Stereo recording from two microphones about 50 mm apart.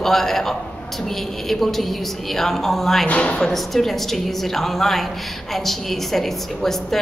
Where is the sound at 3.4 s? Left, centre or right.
Centre.